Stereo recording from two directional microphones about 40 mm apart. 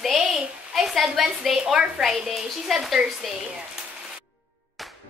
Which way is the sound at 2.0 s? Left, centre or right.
Right.